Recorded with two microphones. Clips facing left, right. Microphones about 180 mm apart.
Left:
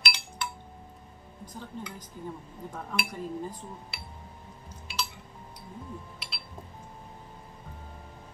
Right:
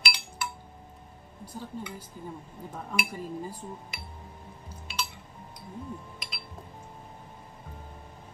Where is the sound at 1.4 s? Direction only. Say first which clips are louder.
Right 2 dB; 10° right (ahead or behind).